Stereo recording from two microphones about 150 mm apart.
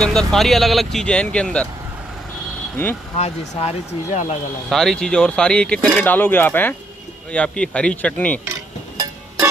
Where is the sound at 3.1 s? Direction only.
45° left (ahead or behind).